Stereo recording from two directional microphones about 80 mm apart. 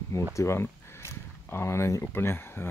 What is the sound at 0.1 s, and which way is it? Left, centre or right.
Speech, left.